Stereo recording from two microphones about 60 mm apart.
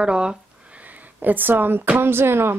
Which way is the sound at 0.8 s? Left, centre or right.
Right.